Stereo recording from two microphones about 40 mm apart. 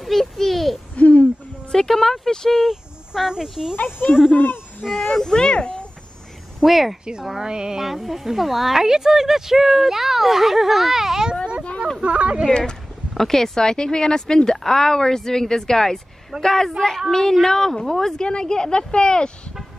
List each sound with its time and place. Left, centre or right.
0.0 s a sound: centre
0.9 s hoot: left
1.7 s a sound: centre
3.2 s speech: centre
3.7 s speech: left
4.4 s a sound: left
5.0 s speech: centre
6.6 s speech: centre
7.2 s speech: centre
7.8 s speech: centre
12.0 s speech: right
13.2 s speech: centre